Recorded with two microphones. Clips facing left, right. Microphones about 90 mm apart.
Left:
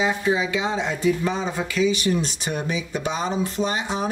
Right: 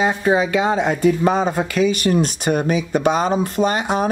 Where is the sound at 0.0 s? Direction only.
55° right (ahead or behind).